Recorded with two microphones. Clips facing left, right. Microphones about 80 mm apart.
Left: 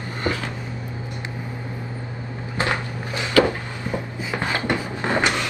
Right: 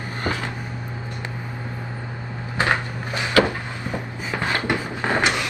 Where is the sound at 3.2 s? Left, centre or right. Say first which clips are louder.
Left 1 dB; centre.